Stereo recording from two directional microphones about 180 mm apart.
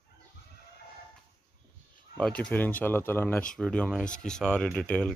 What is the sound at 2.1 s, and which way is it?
Speech, 5° left (ahead or behind).